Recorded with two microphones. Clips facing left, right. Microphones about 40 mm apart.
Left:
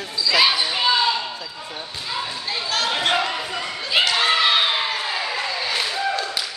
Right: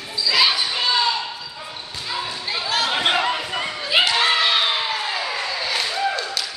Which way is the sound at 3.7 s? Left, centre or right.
Centre.